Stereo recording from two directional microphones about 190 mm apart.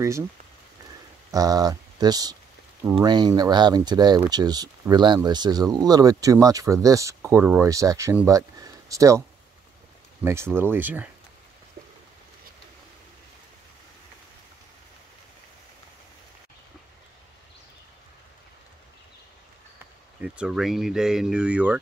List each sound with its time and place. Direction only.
1.3 s speech: 20° right (ahead or behind)
10.2 s speech: 15° right (ahead or behind)
20.2 s speech: 5° right (ahead or behind)